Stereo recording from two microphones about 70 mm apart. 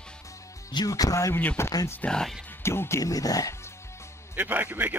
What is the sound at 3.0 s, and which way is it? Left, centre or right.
Speech, left.